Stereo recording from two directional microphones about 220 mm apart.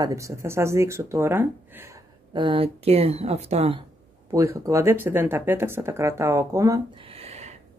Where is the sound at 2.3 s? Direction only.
25° right (ahead or behind).